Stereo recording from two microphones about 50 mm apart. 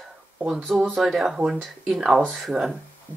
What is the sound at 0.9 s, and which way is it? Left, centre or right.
Speech, centre.